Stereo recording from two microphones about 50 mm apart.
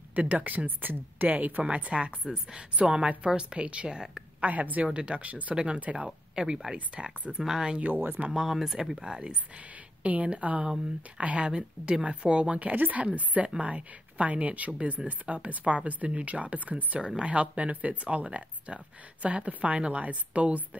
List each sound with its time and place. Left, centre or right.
0.1 s speech: right
4.4 s speech: right
4.8 s speech: right
6.0 s speech: centre
7.4 s speech: centre
7.9 s speech: right
8.3 s speech: centre; by 20.6 s right